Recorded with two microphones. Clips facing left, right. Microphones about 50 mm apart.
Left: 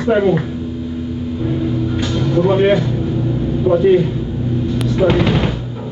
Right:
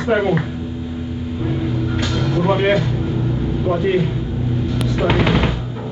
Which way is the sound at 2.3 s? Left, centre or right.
Centre.